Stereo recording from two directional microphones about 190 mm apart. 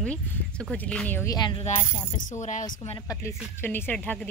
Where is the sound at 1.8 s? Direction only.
40° left (ahead or behind).